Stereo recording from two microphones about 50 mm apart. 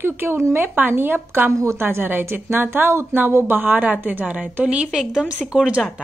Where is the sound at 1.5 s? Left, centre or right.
Right.